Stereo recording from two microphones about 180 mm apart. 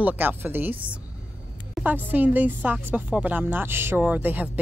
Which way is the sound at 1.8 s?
10° right (ahead or behind).